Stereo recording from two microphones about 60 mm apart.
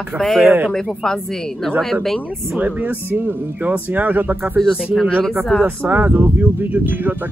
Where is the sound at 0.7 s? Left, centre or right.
Centre.